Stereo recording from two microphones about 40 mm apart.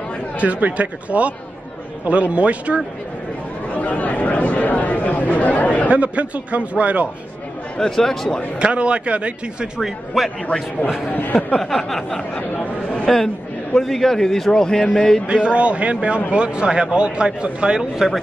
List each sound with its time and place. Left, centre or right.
0.4 s a man's voice: right
3.7 s speech: left
5.9 s a man's voice: right
7.9 s speech: centre
8.5 s a man's voice: right
9.8 s a man's voice: centre
11.1 s speech: left
11.6 s speech: centre
15.2 s a man's voice: right